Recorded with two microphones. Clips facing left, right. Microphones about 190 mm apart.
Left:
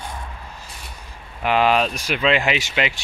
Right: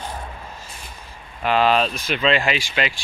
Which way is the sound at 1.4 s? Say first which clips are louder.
Even; 15° left (ahead or behind).